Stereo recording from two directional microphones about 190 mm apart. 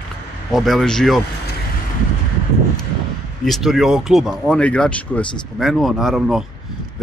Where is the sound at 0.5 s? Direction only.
Centre (ahead or behind).